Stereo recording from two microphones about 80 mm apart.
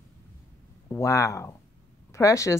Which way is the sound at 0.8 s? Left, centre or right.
Left.